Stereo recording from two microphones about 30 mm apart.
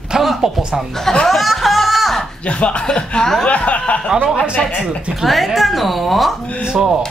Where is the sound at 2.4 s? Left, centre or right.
Left.